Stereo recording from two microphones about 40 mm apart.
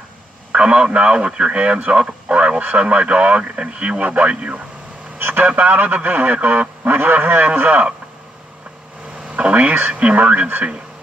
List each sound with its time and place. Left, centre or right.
0.5 s speech: right
5.2 s vehicle: right
5.6 s a man's voice: right
9.4 s speech: right